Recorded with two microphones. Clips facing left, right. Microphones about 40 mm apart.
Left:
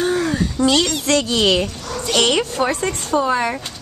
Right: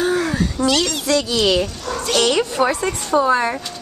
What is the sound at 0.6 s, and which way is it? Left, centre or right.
Speech, centre.